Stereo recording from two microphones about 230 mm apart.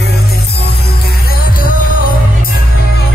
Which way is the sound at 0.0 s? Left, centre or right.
Left.